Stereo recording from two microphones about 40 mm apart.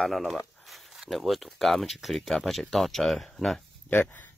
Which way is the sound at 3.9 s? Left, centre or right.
Left.